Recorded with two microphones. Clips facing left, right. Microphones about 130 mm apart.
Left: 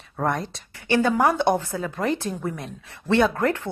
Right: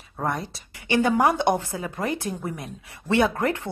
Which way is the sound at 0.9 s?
15° right (ahead or behind).